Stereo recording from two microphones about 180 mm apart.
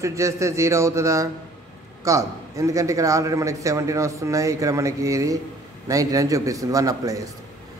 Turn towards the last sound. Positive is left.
turn(degrees=-20)  # may be behind; listen again after turning